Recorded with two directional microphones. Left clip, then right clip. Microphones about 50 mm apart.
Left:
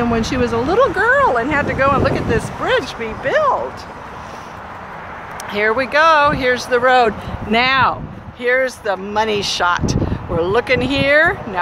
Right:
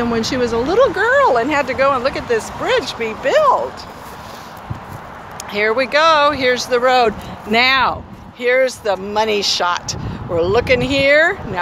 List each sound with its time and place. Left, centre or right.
0.0 s speech: centre
1.1 s speech: centre
1.9 s speech: centre
2.1 s speech: centre
3.0 s speech: right
5.5 s speech: centre
7.5 s speech: centre
9.4 s speech: centre